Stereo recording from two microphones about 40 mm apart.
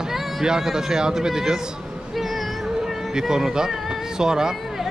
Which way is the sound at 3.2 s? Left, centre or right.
Centre.